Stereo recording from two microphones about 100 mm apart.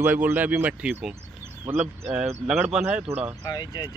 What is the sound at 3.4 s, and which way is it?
Speech, 40° left (ahead or behind).